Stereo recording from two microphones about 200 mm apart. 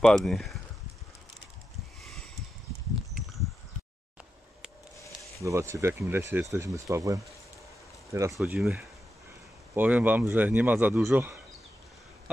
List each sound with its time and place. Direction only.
0.0 s speech: centre (ahead or behind)
5.4 s a man's voice: 15° right (ahead or behind)
8.4 s a man's voice: 5° right (ahead or behind)